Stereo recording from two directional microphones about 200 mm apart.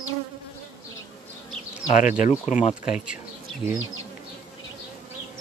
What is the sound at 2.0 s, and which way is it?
Speech, 35° left (ahead or behind).